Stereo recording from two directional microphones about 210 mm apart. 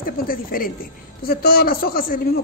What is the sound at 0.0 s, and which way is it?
A woman's voice, 45° left (ahead or behind).